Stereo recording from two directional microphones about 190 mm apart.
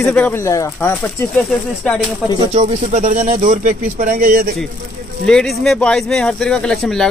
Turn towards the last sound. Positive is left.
turn(degrees=0)  # may be behind; listen again after turning